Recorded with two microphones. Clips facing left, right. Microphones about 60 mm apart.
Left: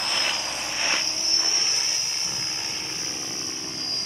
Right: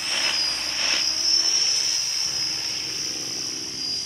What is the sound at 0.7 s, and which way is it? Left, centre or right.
Vehicle, centre.